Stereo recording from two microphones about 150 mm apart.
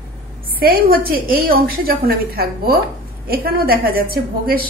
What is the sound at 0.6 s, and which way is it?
A woman's voice, 80° right.